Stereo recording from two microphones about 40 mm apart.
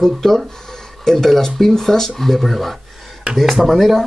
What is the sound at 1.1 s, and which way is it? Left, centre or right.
Speech, centre.